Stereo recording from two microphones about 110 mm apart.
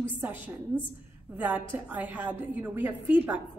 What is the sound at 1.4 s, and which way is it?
A woman's voice, 15° right (ahead or behind).